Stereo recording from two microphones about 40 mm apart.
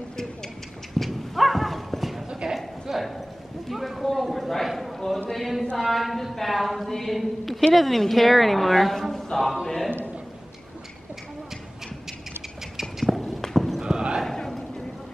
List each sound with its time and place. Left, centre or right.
0.1 s a sound: centre
0.9 s horse: centre
2.2 s clip-clop: right
2.9 s clip-clop: centre
4.0 s a sound: centre
5.3 s chant: centre
5.8 s a woman's voice: centre
9.1 s a sound: centre
13.1 s walk: centre
13.4 s clip-clop: centre
13.7 s horse: centre
14.2 s a sound: centre